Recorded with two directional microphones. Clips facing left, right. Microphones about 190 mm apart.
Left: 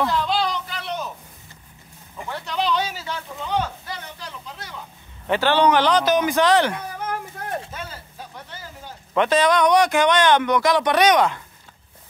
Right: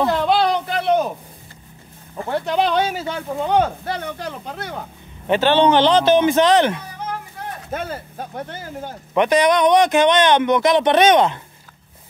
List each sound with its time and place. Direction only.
0.1 s a sound: 60° right (ahead or behind)
2.2 s speech: 55° right (ahead or behind)
5.2 s a man's voice: 20° right (ahead or behind)
7.4 s a sound: 55° left (ahead or behind)
7.7 s speech: 55° right (ahead or behind)
9.1 s a man's voice: 15° right (ahead or behind)